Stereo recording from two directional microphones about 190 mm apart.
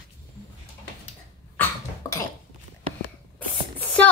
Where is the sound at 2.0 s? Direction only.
15° left (ahead or behind).